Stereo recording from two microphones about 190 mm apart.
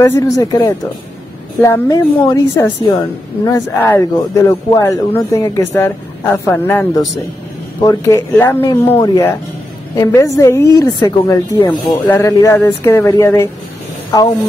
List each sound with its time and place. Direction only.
0.0 s speech: 15° left (ahead or behind)